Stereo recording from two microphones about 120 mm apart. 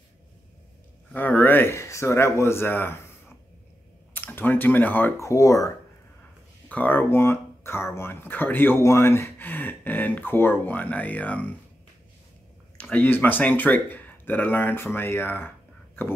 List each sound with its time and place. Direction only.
1.1 s speech: 15° left (ahead or behind)
4.1 s speech: 15° left (ahead or behind)
6.7 s speech: 15° left (ahead or behind)
12.7 s speech: 10° left (ahead or behind)